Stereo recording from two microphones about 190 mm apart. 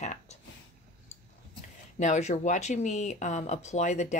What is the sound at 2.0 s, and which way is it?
Speech, 40° left (ahead or behind).